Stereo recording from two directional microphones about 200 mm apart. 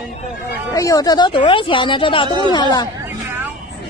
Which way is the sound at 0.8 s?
15° left (ahead or behind).